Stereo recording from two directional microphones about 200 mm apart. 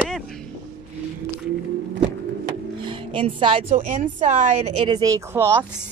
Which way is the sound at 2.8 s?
25° right (ahead or behind).